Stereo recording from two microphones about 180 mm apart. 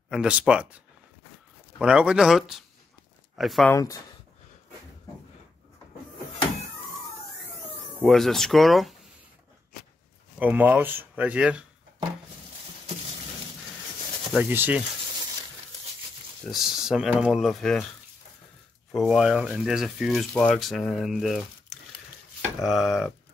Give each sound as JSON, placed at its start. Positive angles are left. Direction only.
{"t": 0.1, "sound": "speech", "side_deg": -5}
{"t": 1.8, "sound": "speech", "side_deg": -5}
{"t": 3.7, "sound": "speech", "side_deg": 20}
{"t": 8.0, "sound": "speech", "side_deg": 0}
{"t": 10.4, "sound": "speech", "side_deg": -10}
{"t": 14.3, "sound": "speech", "side_deg": -10}
{"t": 16.4, "sound": "speech", "side_deg": 0}
{"t": 18.9, "sound": "speech", "side_deg": 0}